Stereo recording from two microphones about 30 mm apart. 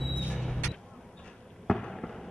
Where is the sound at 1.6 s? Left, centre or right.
Centre.